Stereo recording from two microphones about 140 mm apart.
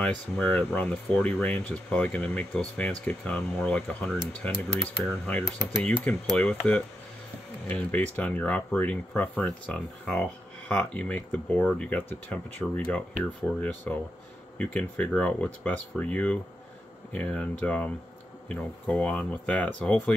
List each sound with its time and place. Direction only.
0.0 s speech: 10° left (ahead or behind)